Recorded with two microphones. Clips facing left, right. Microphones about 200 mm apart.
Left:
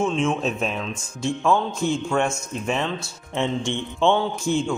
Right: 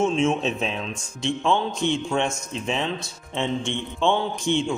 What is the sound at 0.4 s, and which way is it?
Speech, 5° left (ahead or behind).